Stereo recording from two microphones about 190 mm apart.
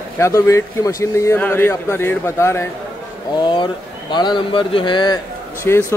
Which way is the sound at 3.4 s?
25° left (ahead or behind).